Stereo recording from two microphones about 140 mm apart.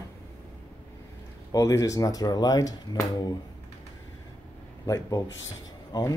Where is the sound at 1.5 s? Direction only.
25° left (ahead or behind).